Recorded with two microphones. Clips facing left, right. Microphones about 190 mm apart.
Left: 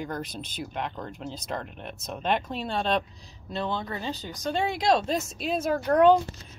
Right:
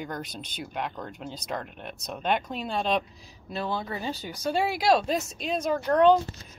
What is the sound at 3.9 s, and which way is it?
Speech, 15° right (ahead or behind).